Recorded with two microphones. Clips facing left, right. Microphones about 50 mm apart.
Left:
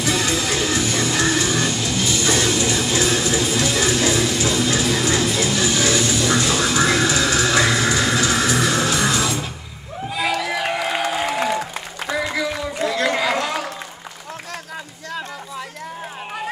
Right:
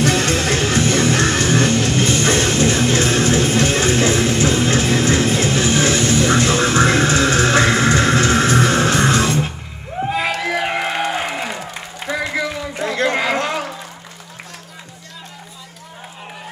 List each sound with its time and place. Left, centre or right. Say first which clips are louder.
0.0 s music: right 4 dB; right
12.7 s chatter: right 2 dB; right